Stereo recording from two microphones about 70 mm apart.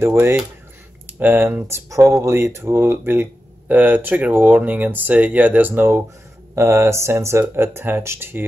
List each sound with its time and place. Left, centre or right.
0.0 s speech: right
1.9 s speech: right
2.2 s speech: right